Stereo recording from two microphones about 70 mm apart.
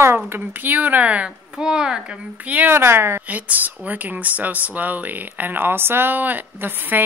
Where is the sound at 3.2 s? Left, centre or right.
Right.